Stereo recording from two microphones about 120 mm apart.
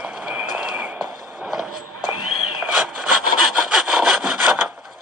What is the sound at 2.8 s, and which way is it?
Rub, 10° right (ahead or behind).